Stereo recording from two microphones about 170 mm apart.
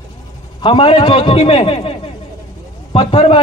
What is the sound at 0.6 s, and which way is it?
A man's voice, 30° left (ahead or behind).